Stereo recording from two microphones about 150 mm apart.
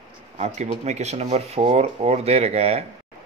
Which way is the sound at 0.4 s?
50° right (ahead or behind).